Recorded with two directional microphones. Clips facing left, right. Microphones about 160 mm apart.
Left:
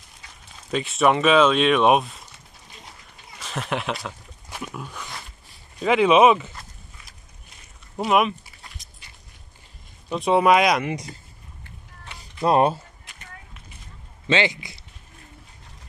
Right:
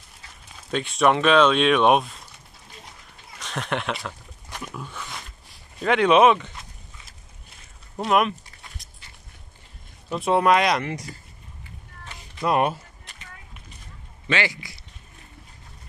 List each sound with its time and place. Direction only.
0.7 s speech: centre (ahead or behind)
3.3 s speech: 5° left (ahead or behind)
8.0 s a sound: 5° left (ahead or behind)
10.1 s speech: centre (ahead or behind)
12.4 s speech: 30° left (ahead or behind)
14.2 s a man's voice: 20° left (ahead or behind)